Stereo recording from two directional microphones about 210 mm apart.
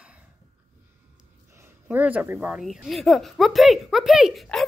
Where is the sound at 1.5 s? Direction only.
10° right (ahead or behind).